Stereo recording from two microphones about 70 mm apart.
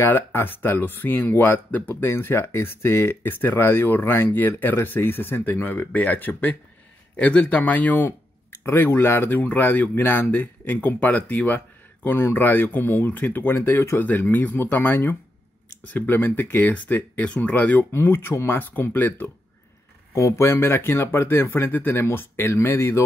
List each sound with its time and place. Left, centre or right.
0.0 s speech: left
13.6 s speech: left
17.9 s speech: left
20.2 s speech: left